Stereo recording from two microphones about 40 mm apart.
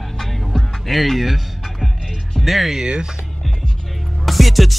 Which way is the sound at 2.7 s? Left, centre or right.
Right.